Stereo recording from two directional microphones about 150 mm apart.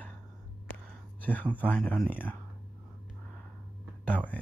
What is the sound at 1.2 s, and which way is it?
Speech, 10° left (ahead or behind).